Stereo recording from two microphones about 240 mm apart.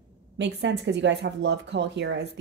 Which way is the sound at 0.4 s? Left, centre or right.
Right.